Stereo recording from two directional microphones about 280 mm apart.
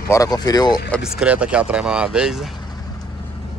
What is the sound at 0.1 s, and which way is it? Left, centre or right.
Speech, centre.